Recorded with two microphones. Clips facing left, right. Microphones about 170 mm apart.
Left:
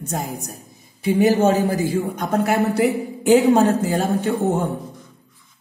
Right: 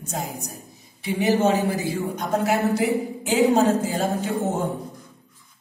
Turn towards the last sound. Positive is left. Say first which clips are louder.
# left 4 dB
turn(degrees=55)  # may be behind; listen again after turning